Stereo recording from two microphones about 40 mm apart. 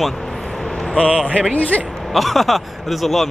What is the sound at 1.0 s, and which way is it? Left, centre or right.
Speech, right.